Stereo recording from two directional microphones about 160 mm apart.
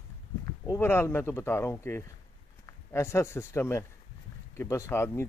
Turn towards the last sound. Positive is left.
turn(degrees=15)  # may be behind; listen again after turning